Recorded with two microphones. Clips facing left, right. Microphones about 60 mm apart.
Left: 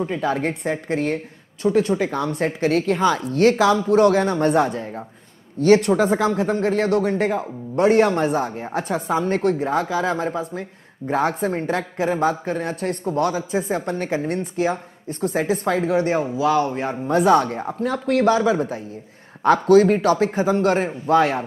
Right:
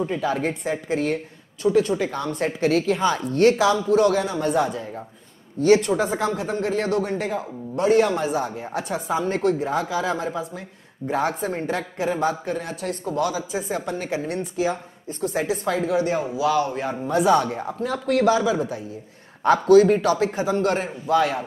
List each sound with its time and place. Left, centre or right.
0.0 s speech: left
5.6 s a man's voice: left
16.3 s a sound: left
17.1 s a man's voice: left